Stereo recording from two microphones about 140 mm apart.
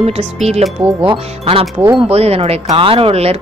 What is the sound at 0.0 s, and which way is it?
Speech, 50° right (ahead or behind).